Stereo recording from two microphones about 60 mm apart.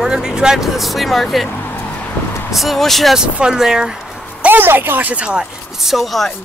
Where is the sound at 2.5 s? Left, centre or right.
Centre.